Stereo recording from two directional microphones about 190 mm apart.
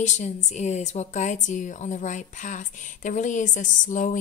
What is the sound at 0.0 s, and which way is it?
Speech, 40° left (ahead or behind).